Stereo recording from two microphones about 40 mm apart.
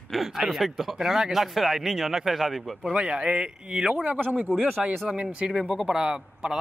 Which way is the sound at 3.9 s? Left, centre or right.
Right.